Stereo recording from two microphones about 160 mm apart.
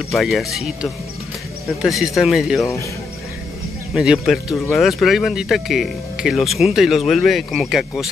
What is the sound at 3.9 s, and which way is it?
Speech, 5° right (ahead or behind).